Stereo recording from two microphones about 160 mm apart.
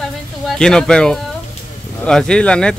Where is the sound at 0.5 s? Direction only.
5° left (ahead or behind).